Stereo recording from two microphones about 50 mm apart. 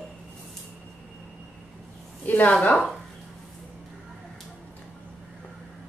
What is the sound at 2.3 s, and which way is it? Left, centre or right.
Speech, left.